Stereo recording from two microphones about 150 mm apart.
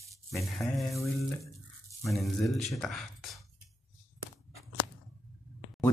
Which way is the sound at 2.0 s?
Centre (ahead or behind).